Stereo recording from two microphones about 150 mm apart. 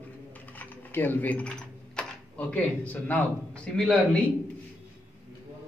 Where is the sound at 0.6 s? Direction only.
15° left (ahead or behind).